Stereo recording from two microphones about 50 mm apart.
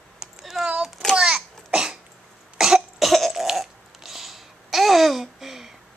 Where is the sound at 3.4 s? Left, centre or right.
Centre.